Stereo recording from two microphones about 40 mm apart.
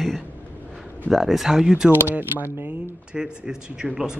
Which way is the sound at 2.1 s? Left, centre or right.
Right.